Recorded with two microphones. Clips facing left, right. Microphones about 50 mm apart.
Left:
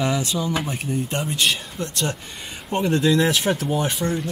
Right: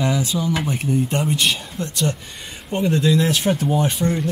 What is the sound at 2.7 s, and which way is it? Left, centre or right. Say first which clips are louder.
Speech: right 1 dB; centre.